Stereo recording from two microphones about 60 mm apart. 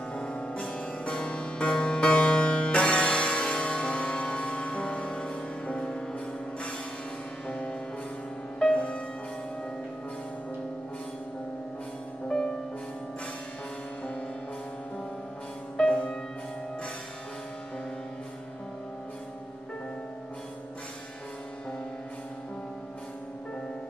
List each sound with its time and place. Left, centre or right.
0.1 s music: centre
15.8 s music: centre